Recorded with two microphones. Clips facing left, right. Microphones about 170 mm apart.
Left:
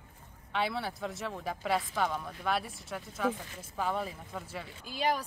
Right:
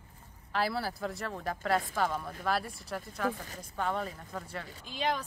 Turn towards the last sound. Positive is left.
turn(degrees=10)  # may be behind; listen again after turning